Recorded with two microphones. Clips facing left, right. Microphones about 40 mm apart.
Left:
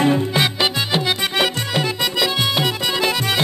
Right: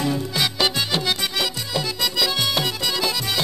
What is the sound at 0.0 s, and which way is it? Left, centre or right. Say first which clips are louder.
Music: left 6 dB; left.